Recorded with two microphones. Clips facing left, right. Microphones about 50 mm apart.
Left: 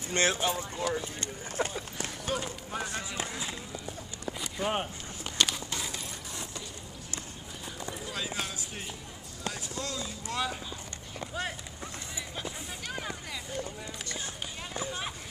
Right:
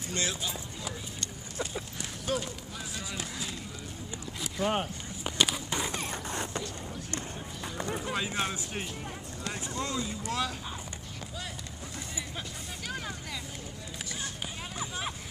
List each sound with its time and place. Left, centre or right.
0.1 s speech: left
1.6 s a sound: left
2.3 s run: centre
3.0 s skateboard: left
4.3 s a sound: centre
5.2 s walk: centre
5.7 s a sound: right
5.9 s mechanisms: right
7.7 s run: right
8.1 s speech: right
9.5 s a sound: right
10.2 s speech: centre
12.8 s speech: centre
14.9 s speech: centre